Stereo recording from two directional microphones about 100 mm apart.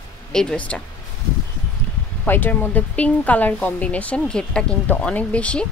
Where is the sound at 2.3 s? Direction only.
20° left (ahead or behind).